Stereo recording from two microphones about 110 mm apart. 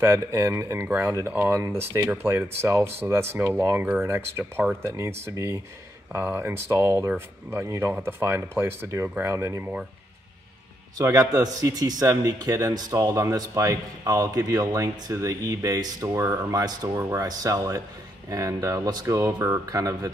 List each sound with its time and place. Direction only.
0.0 s a man's voice: 25° right (ahead or behind)
11.0 s a man's voice: 30° right (ahead or behind)